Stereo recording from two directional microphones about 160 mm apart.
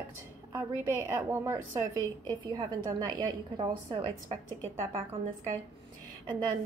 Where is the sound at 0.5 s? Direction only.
15° right (ahead or behind).